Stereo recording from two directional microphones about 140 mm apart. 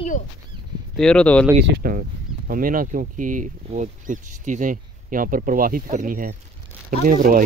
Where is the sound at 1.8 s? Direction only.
90° right; by 7.4 s 70° right (ahead or behind).